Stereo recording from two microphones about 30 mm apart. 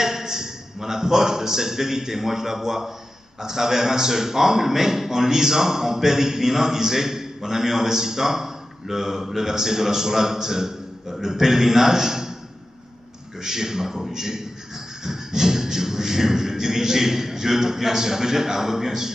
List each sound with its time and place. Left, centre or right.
0.0 s a man's voice: centre
13.4 s a man's voice: centre